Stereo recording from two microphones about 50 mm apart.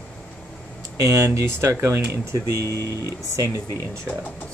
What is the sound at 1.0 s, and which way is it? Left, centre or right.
Speech, right.